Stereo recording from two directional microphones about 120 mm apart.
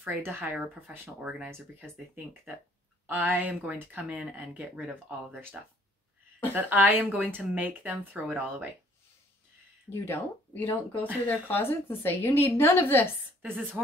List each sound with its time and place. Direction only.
0.0 s speech: 20° right (ahead or behind)
3.1 s speech: 15° right (ahead or behind)
9.8 s a woman's voice: 20° left (ahead or behind)
13.4 s speech: 15° right (ahead or behind)